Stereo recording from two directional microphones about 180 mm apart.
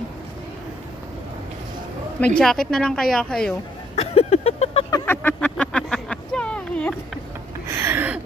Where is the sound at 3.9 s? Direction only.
35° left (ahead or behind).